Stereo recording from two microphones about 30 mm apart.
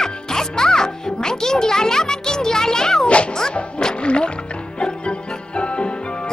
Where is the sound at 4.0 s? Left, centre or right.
Left.